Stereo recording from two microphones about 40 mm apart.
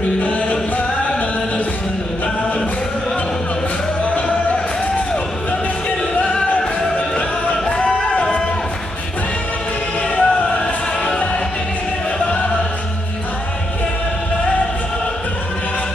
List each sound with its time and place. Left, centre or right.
0.2 s music: left
4.0 s music: left
7.7 s a sound: left
10.1 s music: left
12.2 s music: left